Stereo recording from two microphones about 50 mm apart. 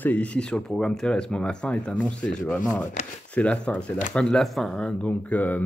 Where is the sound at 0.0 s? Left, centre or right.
Left.